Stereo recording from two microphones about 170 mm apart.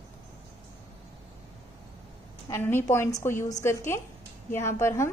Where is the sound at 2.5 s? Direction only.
15° left (ahead or behind).